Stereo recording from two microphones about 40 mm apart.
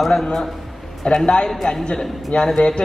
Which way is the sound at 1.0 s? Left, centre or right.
Left.